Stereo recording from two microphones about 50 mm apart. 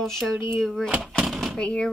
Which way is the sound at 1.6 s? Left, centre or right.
Centre.